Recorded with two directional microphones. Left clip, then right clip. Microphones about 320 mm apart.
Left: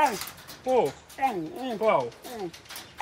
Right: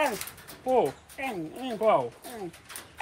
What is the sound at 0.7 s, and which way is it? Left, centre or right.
Speech, centre.